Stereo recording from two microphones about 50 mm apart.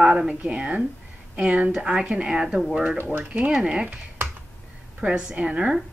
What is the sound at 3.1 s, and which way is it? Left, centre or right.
Speech, right.